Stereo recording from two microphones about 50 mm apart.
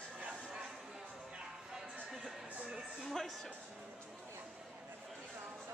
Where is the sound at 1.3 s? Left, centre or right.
Centre.